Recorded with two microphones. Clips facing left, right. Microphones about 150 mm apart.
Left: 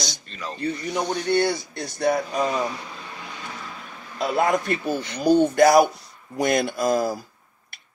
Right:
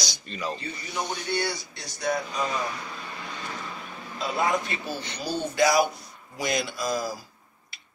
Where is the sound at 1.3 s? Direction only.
55° left (ahead or behind).